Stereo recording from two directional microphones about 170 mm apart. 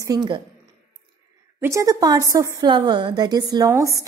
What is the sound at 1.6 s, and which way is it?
A woman's voice, 15° right (ahead or behind).